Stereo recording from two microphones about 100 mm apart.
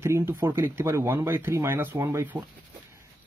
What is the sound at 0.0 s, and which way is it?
Speech, 25° right (ahead or behind).